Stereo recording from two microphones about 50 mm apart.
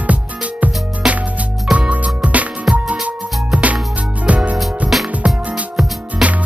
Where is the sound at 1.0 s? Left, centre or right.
Centre.